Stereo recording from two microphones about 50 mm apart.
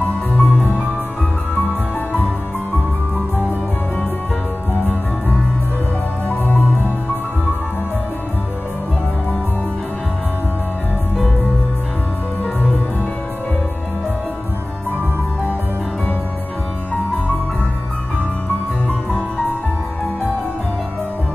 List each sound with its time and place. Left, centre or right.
0.0 s music: left
3.2 s music: right
6.2 s music: left